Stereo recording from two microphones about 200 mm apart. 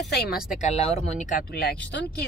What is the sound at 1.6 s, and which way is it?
Speech, 60° left (ahead or behind).